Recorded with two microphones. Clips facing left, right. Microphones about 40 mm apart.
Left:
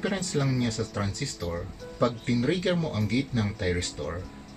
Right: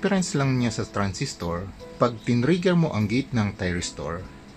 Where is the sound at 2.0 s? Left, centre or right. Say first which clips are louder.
Right 3 dB; right.